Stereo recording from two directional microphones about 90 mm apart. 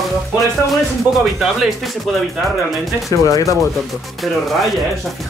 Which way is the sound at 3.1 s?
40° left (ahead or behind).